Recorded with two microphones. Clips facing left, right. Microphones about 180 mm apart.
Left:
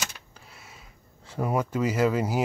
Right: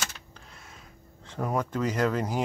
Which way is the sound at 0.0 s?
10° left (ahead or behind).